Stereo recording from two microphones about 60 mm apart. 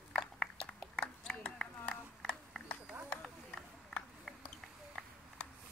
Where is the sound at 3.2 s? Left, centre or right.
Centre.